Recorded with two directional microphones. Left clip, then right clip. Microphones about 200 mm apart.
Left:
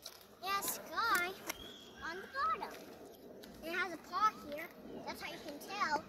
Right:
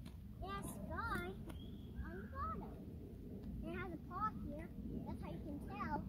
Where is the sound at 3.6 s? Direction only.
10° left (ahead or behind).